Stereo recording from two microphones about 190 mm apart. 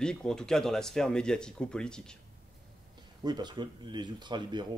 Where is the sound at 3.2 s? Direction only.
25° right (ahead or behind).